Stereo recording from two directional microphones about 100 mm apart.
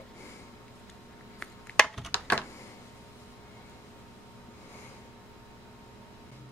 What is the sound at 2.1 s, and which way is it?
Computer keyboard, 15° left (ahead or behind).